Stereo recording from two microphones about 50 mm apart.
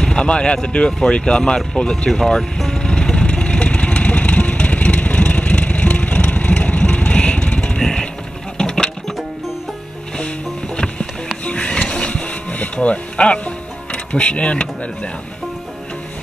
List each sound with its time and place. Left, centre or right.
0.0 s speech: centre
2.0 s music: centre
7.8 s a sound: centre
8.5 s sewing machine: centre
11.4 s music: left
11.9 s a sound: left
13.9 s speech: left